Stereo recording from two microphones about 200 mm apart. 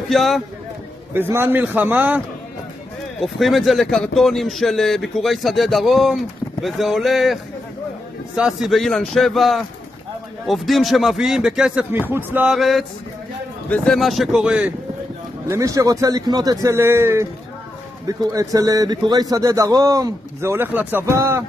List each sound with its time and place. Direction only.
0.1 s a man's voice: centre (ahead or behind)
1.3 s a man's voice: 10° right (ahead or behind)
8.4 s a man's voice: 5° right (ahead or behind)